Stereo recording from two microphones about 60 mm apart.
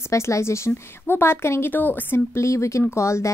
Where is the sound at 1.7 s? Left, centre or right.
Left.